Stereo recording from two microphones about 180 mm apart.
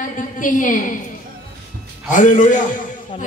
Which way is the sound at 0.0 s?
45° left (ahead or behind).